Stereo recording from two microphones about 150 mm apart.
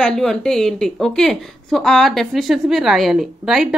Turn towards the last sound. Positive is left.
turn(degrees=0)  # may be behind; listen again after turning